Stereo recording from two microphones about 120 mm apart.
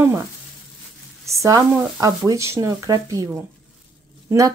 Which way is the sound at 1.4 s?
30° right (ahead or behind).